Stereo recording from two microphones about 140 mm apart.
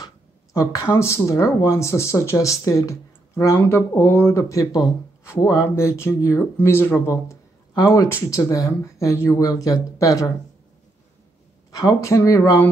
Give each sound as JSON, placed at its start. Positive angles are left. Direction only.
{"t": 0.0, "sound": "speech", "side_deg": 25}
{"t": 11.7, "sound": "speech", "side_deg": 25}